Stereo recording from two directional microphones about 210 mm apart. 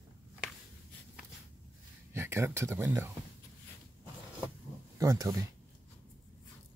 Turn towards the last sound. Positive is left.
turn(degrees=-15)  # may be behind; listen again after turning